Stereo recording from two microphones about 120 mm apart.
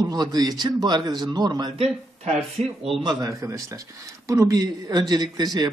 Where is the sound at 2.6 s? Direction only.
65° right (ahead or behind).